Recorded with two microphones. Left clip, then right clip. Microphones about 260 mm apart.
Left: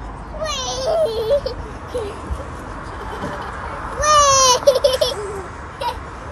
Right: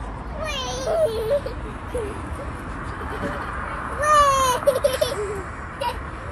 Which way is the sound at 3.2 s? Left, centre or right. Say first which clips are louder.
Left 1 dB; left.